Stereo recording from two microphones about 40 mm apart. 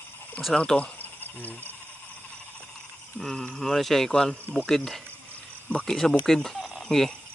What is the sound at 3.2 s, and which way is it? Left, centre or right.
Speech, centre.